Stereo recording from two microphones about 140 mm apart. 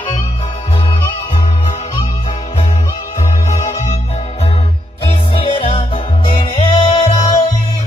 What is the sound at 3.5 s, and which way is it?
Music, 60° left (ahead or behind).